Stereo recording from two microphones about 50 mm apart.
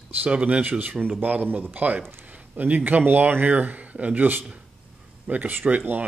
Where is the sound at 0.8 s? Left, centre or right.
Right.